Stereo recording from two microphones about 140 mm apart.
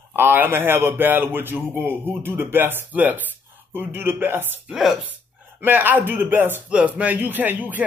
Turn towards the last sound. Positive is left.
turn(degrees=-10)  # may be behind; listen again after turning